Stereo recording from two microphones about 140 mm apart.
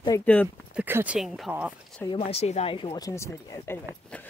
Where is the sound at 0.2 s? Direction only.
10° left (ahead or behind).